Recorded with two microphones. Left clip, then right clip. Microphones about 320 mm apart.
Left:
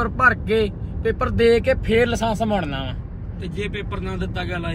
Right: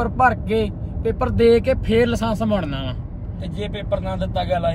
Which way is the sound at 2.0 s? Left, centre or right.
Left.